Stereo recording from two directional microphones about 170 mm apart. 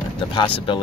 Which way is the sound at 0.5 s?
30° left (ahead or behind).